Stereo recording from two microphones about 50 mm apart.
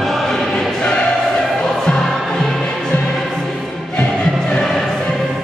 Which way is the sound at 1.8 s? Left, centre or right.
Centre.